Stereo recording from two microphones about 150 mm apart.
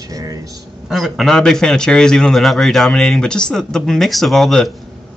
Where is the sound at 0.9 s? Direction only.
Centre (ahead or behind).